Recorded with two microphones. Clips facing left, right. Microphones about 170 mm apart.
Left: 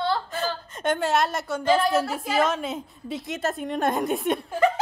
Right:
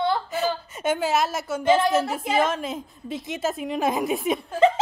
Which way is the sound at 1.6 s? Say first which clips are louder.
Right 2 dB; 20° right (ahead or behind).